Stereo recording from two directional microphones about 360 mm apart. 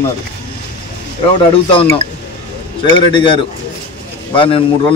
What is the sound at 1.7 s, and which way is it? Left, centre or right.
Speech, centre.